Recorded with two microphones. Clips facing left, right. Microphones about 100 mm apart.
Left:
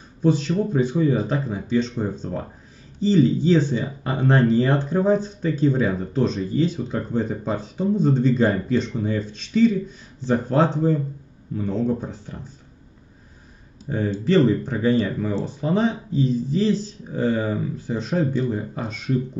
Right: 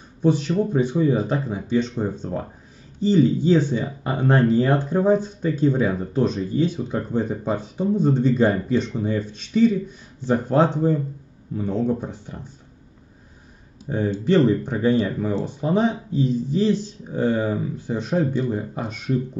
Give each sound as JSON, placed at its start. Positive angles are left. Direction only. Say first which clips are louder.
{"t": 0.2, "sound": "speech", "louder": "even", "side_deg": -15}
{"t": 13.8, "sound": "speech", "louder": "right 1 dB", "side_deg": -15}